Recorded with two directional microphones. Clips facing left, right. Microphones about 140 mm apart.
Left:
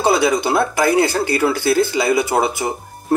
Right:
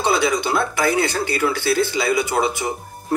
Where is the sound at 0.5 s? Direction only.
30° left (ahead or behind).